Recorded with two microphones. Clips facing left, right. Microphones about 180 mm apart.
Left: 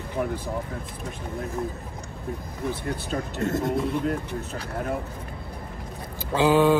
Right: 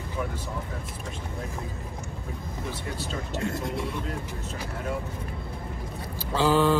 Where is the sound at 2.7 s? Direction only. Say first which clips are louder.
Left 6 dB; 60° left (ahead or behind).